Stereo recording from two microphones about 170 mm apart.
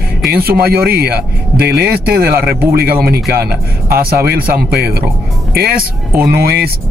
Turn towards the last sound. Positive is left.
turn(degrees=-65)  # may be behind; listen again after turning